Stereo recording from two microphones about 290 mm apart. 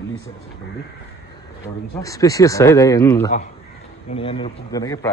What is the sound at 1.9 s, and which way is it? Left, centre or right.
Speech, centre.